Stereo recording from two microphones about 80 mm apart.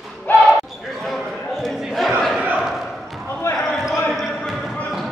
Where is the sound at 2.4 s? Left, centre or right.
Centre.